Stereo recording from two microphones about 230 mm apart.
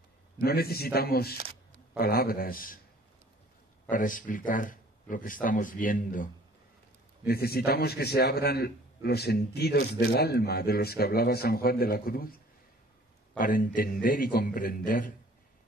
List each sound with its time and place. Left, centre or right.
0.4 s speech: left
3.9 s speech: left
7.2 s a man's voice: left
13.4 s speech: left